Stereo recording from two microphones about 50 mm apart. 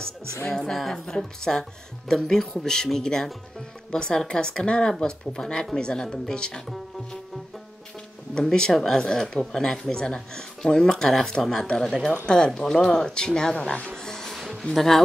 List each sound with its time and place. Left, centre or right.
0.5 s speech: centre
8.4 s speech: centre
13.8 s music: centre
14.6 s speech: centre